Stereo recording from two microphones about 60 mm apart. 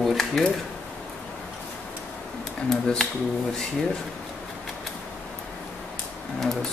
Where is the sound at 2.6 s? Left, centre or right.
Centre.